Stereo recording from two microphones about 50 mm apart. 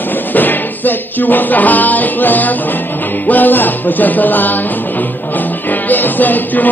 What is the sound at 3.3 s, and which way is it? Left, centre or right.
Speech, left.